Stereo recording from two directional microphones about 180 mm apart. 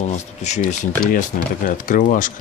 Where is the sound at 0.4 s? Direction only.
40° left (ahead or behind).